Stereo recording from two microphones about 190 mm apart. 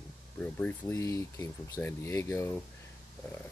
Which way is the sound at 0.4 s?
5° left (ahead or behind).